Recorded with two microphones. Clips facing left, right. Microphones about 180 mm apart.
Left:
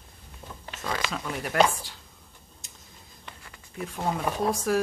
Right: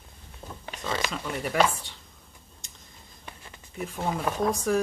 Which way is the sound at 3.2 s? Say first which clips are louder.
Right 2 dB; 25° right (ahead or behind).